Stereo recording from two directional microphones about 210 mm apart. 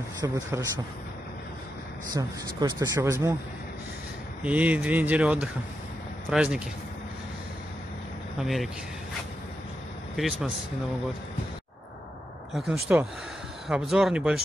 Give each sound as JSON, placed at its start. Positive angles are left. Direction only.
{"t": 0.2, "sound": "speech", "side_deg": -20}
{"t": 2.1, "sound": "speech", "side_deg": -20}
{"t": 4.4, "sound": "speech", "side_deg": -5}
{"t": 8.4, "sound": "speech", "side_deg": 0}
{"t": 10.1, "sound": "speech", "side_deg": 0}
{"t": 12.5, "sound": "speech", "side_deg": 0}